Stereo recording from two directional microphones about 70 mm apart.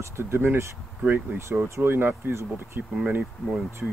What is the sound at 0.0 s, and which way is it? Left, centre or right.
Speech, right.